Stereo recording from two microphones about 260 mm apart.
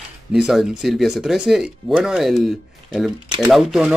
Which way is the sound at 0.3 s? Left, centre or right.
Centre.